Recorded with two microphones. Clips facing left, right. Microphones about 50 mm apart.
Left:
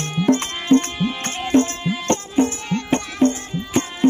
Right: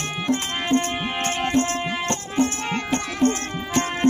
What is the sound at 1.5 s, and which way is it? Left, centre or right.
Music, left.